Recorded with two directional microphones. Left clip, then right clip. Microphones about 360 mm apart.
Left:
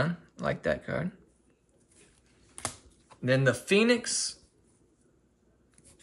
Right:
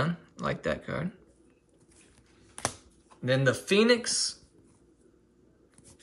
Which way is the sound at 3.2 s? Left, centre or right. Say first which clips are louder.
Even; centre.